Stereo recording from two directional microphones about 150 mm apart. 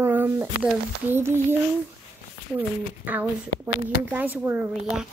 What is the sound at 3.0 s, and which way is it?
Speech, 10° right (ahead or behind).